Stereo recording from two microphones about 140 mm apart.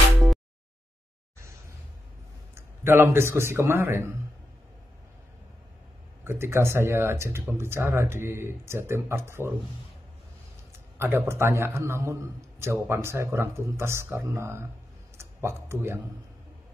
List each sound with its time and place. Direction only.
2.5 s speech: 15° right (ahead or behind)
6.2 s speech: 15° right (ahead or behind)
11.0 s a man's voice: 15° right (ahead or behind)